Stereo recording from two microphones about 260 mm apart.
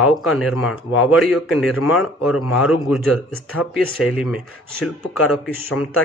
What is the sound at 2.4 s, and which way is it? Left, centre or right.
Speech, left.